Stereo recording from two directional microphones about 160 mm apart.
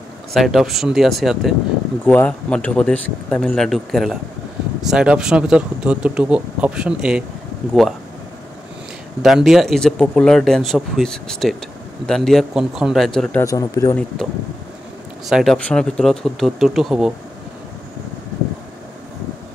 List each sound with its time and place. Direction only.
0.3 s speech: centre (ahead or behind)
2.0 s speech: 10° left (ahead or behind)
9.2 s speech: centre (ahead or behind)
13.4 s speech: 20° left (ahead or behind)
14.2 s speech: centre (ahead or behind)